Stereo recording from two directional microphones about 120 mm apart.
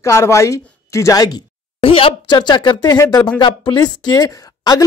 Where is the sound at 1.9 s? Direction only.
50° left (ahead or behind).